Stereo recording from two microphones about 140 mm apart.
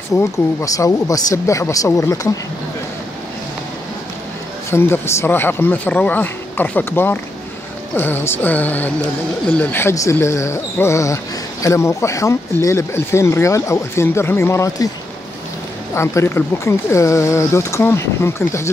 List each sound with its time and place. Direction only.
0.1 s speech: 20° left (ahead or behind)
4.6 s speech: 20° left (ahead or behind)
15.9 s speech: 20° left (ahead or behind)